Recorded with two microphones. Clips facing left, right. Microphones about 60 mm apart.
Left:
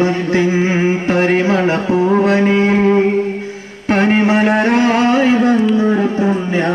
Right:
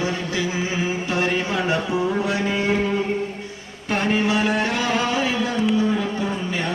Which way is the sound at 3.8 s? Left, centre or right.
Left.